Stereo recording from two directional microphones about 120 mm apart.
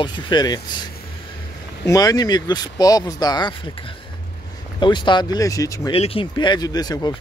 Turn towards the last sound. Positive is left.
turn(degrees=35)  # may be behind; listen again after turning